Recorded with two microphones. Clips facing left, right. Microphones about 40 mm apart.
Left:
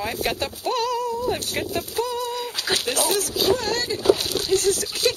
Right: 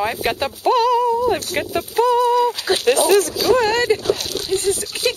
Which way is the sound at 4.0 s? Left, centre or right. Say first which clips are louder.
Left 1 dB; centre.